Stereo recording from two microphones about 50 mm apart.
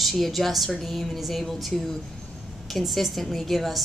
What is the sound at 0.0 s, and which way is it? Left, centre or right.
A woman's voice, centre.